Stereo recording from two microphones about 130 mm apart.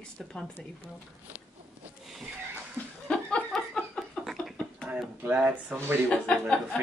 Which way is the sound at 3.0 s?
5° left (ahead or behind).